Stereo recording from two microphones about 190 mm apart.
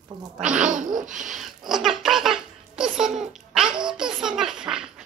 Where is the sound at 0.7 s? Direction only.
40° right (ahead or behind).